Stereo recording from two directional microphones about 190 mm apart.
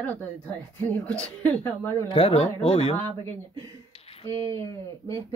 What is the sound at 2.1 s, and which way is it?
Speech, 30° left (ahead or behind).